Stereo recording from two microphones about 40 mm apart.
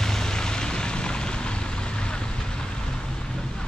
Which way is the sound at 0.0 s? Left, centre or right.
Centre.